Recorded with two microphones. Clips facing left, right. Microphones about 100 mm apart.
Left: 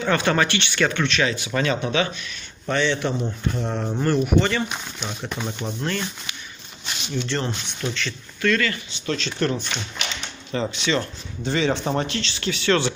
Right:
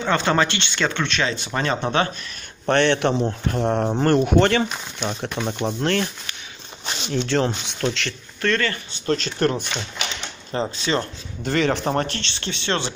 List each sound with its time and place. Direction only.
0.0 s speech: 25° right (ahead or behind)
2.6 s speech: 65° right (ahead or behind)
7.1 s speech: 90° right
8.4 s speech: 35° right (ahead or behind)
11.4 s speech: 50° right (ahead or behind)
12.4 s speech: 30° right (ahead or behind)